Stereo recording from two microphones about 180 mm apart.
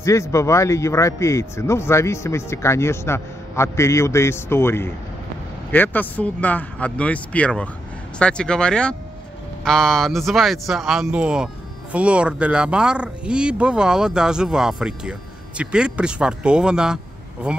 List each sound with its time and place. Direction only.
0.0 s speech: 15° left (ahead or behind); by 17.6 s 5° right (ahead or behind)